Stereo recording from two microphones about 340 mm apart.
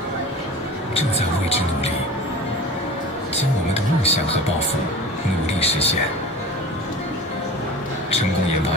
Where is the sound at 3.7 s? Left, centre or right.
Centre.